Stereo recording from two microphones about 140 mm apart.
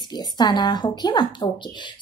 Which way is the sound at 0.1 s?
30° left (ahead or behind).